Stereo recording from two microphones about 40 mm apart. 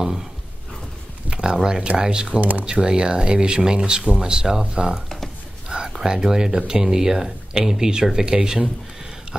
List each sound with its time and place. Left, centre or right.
1.3 s speech: right